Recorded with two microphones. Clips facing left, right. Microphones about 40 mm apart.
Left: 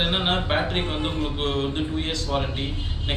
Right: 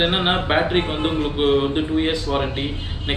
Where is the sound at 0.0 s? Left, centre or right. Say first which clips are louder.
Right 4 dB; right.